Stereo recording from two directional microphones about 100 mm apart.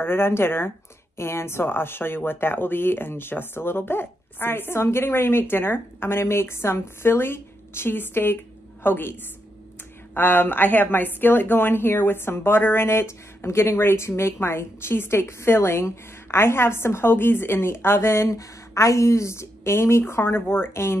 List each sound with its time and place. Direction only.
0.0 s a woman's voice: 25° left (ahead or behind)
10.1 s a woman's voice: 20° left (ahead or behind)